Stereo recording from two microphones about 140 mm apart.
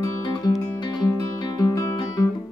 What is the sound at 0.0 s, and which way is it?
Music, 30° left (ahead or behind).